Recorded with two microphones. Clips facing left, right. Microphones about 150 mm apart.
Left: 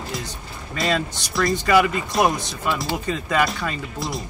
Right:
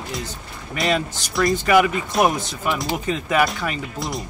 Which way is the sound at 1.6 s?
15° right (ahead or behind).